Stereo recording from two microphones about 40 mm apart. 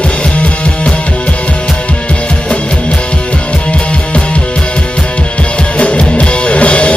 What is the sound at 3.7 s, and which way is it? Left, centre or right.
Music, left.